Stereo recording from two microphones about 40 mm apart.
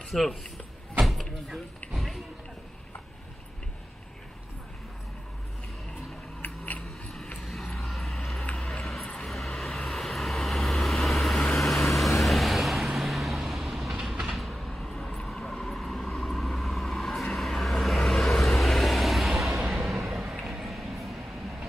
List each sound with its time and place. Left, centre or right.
0.1 s speech: centre
1.0 s door: centre
6.4 s a sound: left
7.7 s vehicle: centre